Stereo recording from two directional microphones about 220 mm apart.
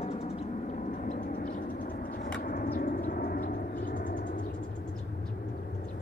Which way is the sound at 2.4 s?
40° left (ahead or behind).